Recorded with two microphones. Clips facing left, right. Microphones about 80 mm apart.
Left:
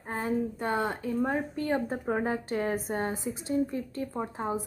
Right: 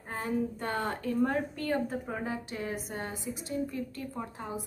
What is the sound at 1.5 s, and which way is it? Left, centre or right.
Speech, left.